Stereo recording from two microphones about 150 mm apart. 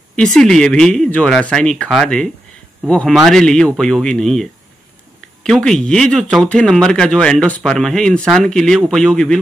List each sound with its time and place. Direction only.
0.1 s speech: 5° left (ahead or behind)